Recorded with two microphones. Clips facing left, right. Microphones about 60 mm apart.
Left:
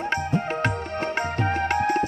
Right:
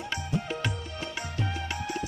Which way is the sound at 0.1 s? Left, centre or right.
Left.